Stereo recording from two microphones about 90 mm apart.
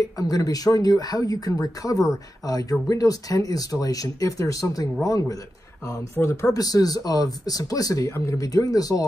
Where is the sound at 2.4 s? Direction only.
45° left (ahead or behind).